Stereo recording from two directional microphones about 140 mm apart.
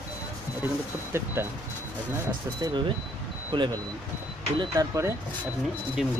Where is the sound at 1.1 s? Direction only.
15° right (ahead or behind).